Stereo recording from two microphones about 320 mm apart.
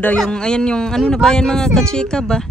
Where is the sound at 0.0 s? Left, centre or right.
Centre.